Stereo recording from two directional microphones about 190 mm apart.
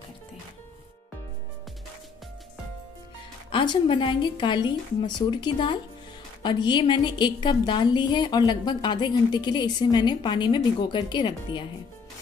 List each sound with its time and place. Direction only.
3.5 s a woman's voice: 25° left (ahead or behind)